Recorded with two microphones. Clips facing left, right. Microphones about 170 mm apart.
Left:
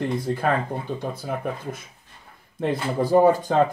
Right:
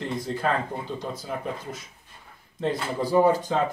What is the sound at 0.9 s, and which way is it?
Speech, 55° left (ahead or behind).